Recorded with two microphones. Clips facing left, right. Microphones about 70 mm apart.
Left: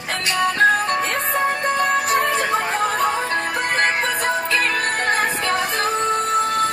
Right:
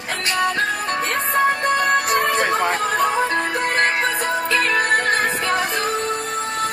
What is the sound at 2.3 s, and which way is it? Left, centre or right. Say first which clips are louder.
Music: right 2 dB; right.